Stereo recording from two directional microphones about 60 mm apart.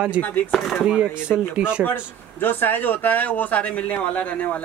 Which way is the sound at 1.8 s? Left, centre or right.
Left.